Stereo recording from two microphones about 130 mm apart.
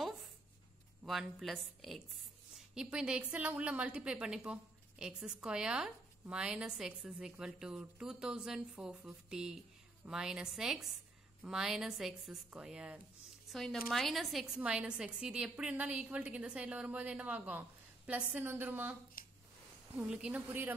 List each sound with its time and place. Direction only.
1.0 s a woman's voice: centre (ahead or behind)
19.2 s a sound: 90° left
20.0 s a woman's voice: 5° right (ahead or behind)